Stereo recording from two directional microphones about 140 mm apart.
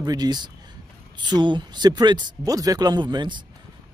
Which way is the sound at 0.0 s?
30° right (ahead or behind).